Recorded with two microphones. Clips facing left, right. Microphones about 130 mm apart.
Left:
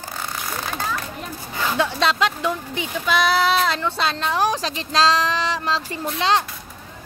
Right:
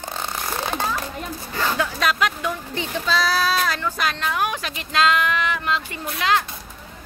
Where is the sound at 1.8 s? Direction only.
25° left (ahead or behind).